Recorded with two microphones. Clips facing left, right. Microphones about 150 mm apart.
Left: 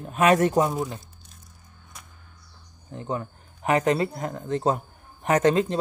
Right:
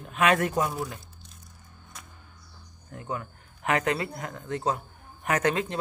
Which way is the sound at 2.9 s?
25° left (ahead or behind).